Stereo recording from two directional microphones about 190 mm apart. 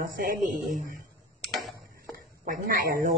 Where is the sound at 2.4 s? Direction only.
45° right (ahead or behind).